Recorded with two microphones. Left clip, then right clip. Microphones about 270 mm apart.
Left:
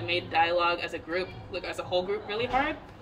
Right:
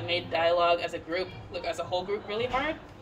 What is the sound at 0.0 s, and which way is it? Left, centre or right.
A man's voice, centre.